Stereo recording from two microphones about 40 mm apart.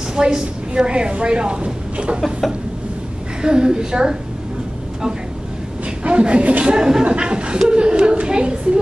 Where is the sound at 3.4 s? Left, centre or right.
Right.